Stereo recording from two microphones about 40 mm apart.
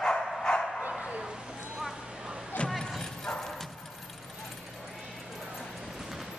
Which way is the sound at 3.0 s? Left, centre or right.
Centre.